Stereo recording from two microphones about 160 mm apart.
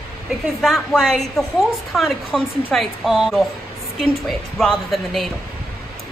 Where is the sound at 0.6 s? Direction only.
Centre (ahead or behind).